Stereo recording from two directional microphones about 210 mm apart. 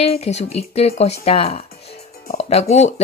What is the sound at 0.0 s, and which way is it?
A woman's voice, 30° left (ahead or behind).